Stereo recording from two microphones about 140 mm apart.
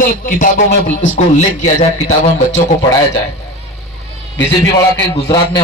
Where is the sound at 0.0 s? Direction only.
90° left; by 2.4 s 55° left (ahead or behind).